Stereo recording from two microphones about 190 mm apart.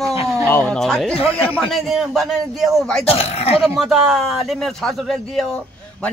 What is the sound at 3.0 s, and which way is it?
Speech, 30° left (ahead or behind).